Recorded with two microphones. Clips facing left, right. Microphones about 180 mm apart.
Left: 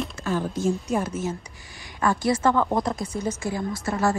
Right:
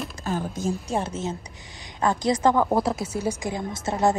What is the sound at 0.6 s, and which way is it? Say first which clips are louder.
Speech: left 2 dB; 30° right (ahead or behind).